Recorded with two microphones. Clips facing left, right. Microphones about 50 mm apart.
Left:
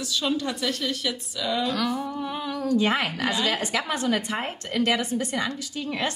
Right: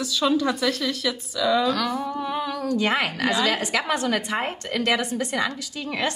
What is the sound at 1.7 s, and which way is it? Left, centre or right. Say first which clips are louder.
A woman's voice: right 2 dB; centre.